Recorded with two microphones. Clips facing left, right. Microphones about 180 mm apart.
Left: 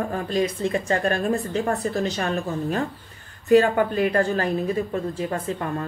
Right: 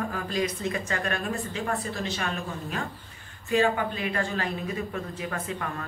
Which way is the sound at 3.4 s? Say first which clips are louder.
Left 7 dB; 45° left (ahead or behind).